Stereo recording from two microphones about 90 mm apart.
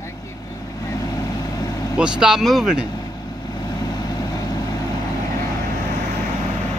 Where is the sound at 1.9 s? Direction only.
10° right (ahead or behind).